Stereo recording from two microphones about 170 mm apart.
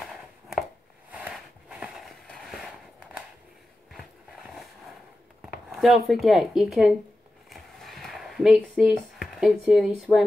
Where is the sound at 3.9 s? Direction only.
Centre (ahead or behind).